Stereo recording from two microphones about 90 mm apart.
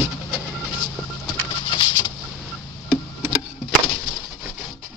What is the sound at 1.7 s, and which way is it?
Patter, 60° left (ahead or behind).